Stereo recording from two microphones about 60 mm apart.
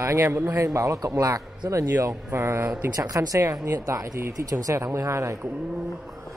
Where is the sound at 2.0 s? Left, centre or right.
Right.